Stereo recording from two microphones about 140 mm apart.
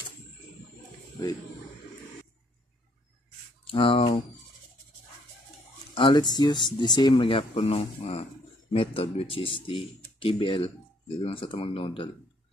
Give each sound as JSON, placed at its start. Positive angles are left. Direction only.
{"t": 3.6, "sound": "speech", "side_deg": 40}
{"t": 5.9, "sound": "speech", "side_deg": 35}